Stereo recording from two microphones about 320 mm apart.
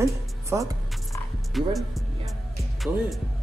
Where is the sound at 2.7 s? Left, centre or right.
Centre.